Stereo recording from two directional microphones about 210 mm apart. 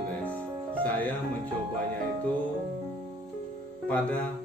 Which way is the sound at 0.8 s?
10° left (ahead or behind).